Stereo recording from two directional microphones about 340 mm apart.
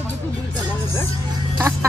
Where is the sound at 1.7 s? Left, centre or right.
Centre.